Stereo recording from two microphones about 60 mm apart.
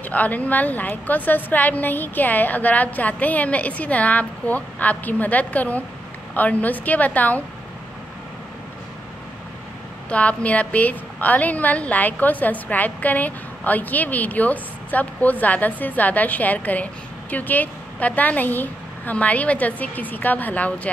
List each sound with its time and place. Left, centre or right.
0.0 s a woman's voice: left
10.0 s a woman's voice: left